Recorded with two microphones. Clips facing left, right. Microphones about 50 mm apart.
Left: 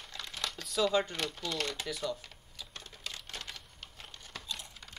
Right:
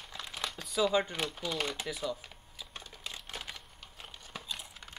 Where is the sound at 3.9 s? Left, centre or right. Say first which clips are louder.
Right 2 dB; centre.